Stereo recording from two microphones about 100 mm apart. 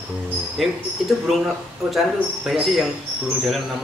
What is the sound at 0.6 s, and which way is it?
Speech, centre (ahead or behind).